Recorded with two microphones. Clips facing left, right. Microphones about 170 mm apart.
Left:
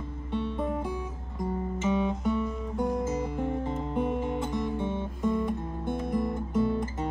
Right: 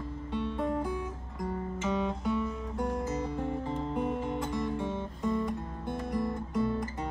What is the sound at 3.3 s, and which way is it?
Music, 20° left (ahead or behind).